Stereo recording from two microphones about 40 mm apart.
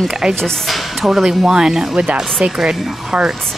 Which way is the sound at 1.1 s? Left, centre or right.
Centre.